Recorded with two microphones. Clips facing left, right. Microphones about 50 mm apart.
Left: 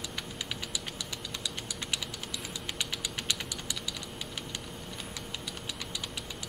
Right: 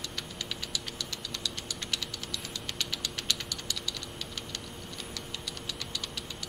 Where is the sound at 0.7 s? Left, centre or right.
Centre.